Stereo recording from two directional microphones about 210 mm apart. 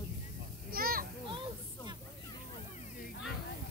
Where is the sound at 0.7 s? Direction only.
45° right (ahead or behind).